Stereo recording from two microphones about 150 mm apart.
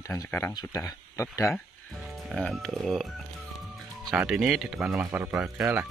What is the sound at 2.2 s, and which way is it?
Speech, centre (ahead or behind).